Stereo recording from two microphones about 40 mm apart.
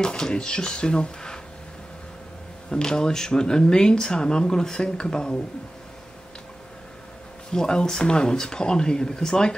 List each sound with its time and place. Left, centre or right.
0.0 s speech: left
2.7 s speech: centre
7.5 s speech: centre